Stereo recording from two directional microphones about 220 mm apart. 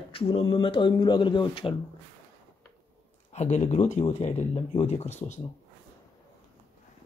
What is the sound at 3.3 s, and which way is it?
Speech, 30° left (ahead or behind).